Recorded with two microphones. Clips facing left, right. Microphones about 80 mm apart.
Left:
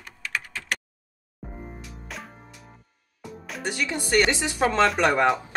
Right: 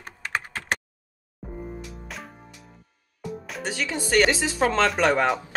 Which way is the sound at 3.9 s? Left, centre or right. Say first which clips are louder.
Right 2 dB; centre.